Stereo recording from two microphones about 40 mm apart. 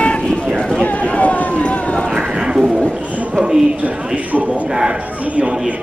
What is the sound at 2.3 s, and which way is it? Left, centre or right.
Bird, centre.